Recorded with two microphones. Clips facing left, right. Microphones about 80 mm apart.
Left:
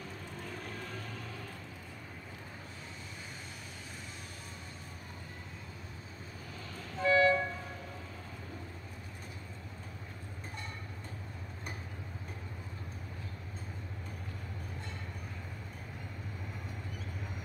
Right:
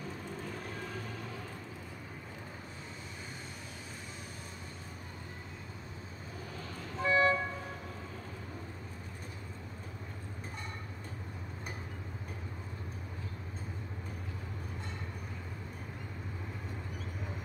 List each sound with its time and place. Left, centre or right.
7.0 s music: right